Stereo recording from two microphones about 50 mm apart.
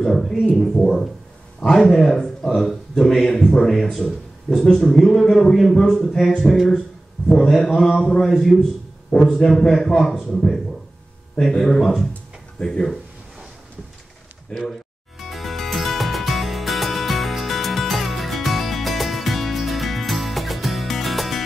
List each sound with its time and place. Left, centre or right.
0.0 s a man's voice: centre
3.3 s a man's voice: centre
3.9 s a man's voice: centre
14.5 s music: centre